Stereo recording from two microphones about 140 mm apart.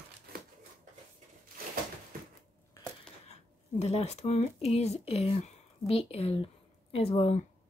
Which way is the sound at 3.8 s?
50° left (ahead or behind).